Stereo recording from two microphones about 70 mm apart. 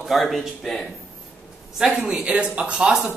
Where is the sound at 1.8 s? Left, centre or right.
Centre.